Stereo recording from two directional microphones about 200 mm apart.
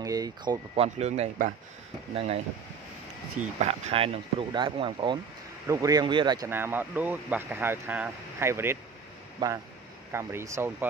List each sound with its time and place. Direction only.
0.0 s speech: 20° right (ahead or behind)
0.7 s speech: 30° right (ahead or behind)
3.3 s speech: 35° right (ahead or behind); by 10.9 s 15° right (ahead or behind)